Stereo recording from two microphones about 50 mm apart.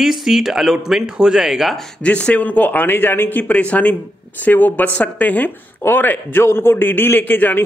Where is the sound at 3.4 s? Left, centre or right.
Left.